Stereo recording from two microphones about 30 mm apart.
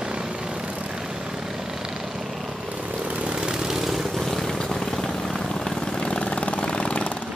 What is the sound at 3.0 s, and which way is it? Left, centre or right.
Vehicle, right.